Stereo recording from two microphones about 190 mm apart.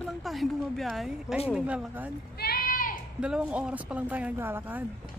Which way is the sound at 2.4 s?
50° left (ahead or behind).